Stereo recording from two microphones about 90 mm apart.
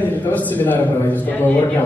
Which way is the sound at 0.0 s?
20° left (ahead or behind).